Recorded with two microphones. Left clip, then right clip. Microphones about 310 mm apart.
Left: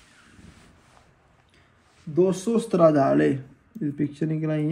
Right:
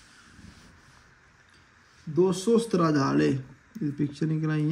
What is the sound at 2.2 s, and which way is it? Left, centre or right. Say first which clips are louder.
A man's voice: even; centre.